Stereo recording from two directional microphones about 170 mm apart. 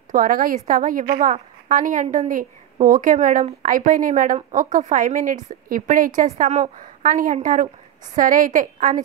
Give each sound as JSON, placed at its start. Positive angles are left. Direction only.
{"t": 0.1, "sound": "a woman's voice", "side_deg": -55}